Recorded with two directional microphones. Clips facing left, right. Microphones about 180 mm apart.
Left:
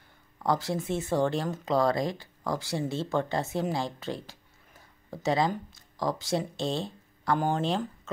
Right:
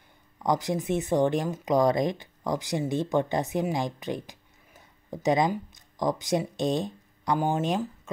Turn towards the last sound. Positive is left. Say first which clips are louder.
# right 2 dB
turn(degrees=-10)  # may be behind; listen again after turning